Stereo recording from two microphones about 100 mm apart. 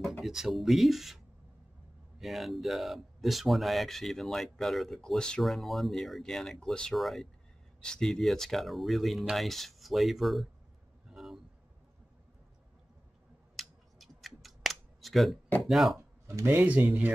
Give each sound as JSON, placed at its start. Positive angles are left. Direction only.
{"t": 0.2, "sound": "speech", "side_deg": -5}
{"t": 11.1, "sound": "vehicle", "side_deg": 0}
{"t": 13.6, "sound": "a sound", "side_deg": 0}
{"t": 15.6, "sound": "speech", "side_deg": 0}
{"t": 16.3, "sound": "speech", "side_deg": -20}